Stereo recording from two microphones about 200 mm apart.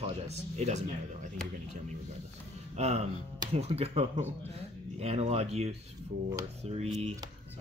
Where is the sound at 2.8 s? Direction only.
30° right (ahead or behind).